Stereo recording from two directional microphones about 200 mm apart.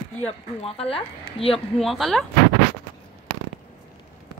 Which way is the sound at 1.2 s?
30° left (ahead or behind).